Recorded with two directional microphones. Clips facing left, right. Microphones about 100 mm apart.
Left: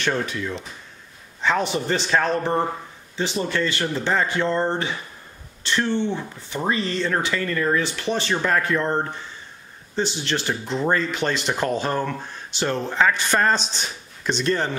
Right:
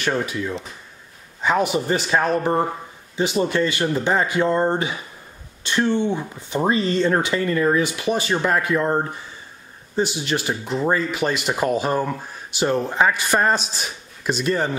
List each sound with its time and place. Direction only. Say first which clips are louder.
0.0 s speech: right 1 dB; 10° right (ahead or behind)